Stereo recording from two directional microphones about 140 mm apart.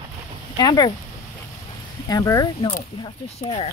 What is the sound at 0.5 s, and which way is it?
Speech, 30° left (ahead or behind).